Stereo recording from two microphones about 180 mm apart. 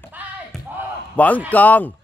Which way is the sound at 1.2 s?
10° left (ahead or behind).